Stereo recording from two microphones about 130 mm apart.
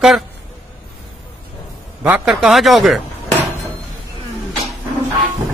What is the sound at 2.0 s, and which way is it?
Speech, 10° right (ahead or behind).